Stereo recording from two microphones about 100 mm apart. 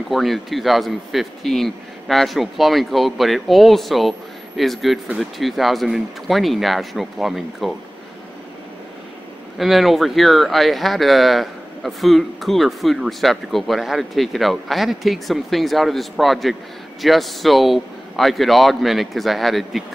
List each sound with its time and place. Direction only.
0.1 s speech: centre (ahead or behind)
9.6 s speech: centre (ahead or behind)